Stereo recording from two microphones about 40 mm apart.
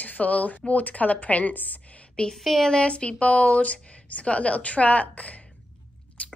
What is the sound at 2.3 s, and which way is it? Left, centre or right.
Speech, centre.